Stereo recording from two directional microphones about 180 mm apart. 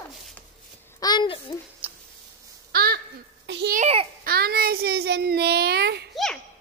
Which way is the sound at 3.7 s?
40° right (ahead or behind).